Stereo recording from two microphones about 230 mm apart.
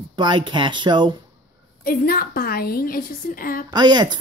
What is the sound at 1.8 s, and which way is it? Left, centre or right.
A woman's voice, left.